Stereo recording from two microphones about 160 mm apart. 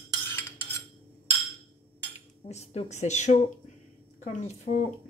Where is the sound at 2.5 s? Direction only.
45° left (ahead or behind).